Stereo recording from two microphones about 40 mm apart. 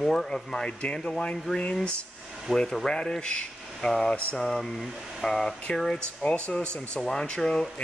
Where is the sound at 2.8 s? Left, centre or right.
Centre.